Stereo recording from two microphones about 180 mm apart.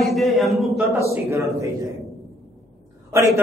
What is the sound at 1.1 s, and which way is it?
Speech, 15° right (ahead or behind).